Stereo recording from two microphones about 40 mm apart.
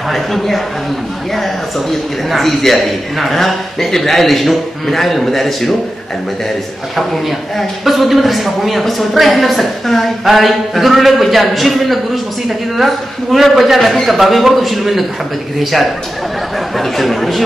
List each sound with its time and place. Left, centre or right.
0.1 s a man's voice: centre
7.0 s a man's voice: centre
16.5 s a man's voice: centre